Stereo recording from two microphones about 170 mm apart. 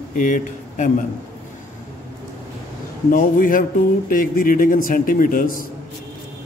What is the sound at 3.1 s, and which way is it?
Speech, 55° left (ahead or behind).